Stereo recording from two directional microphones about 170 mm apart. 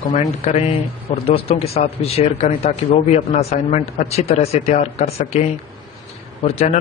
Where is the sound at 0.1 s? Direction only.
45° left (ahead or behind).